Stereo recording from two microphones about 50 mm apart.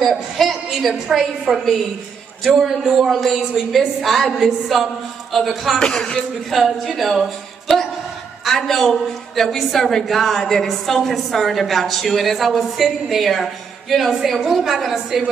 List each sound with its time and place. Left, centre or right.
0.0 s a woman's voice: centre
1.5 s a woman's voice: centre
3.1 s a woman's voice: centre
5.8 s speech: centre
6.5 s a woman's voice: centre